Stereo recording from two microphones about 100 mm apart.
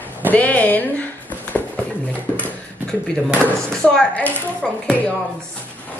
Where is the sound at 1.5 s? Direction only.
15° left (ahead or behind).